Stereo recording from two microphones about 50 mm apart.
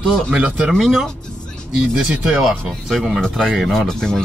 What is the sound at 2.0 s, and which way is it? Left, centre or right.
Speech, centre.